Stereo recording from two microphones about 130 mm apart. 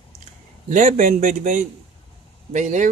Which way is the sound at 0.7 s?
70° right (ahead or behind).